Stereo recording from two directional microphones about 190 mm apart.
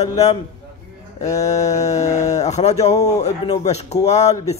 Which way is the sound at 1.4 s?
35° left (ahead or behind).